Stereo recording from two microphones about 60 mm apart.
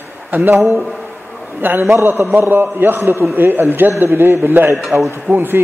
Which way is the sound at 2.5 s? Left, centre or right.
Right.